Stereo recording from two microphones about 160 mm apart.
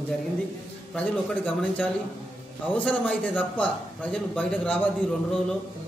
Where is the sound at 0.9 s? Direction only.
10° left (ahead or behind).